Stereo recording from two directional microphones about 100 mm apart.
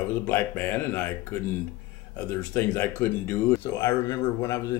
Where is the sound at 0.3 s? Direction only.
15° left (ahead or behind).